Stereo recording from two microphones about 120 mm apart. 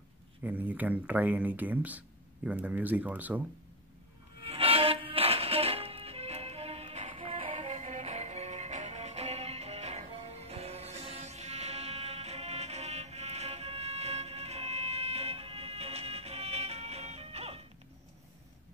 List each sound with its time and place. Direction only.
0.4 s speech: 15° right (ahead or behind)
4.5 s music: 50° right (ahead or behind)